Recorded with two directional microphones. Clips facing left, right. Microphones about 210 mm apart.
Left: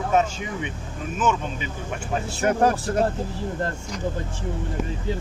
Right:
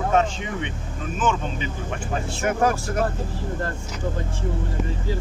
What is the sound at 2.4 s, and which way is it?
Speech, 35° left (ahead or behind).